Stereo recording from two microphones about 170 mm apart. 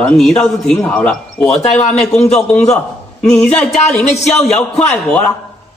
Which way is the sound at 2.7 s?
5° left (ahead or behind).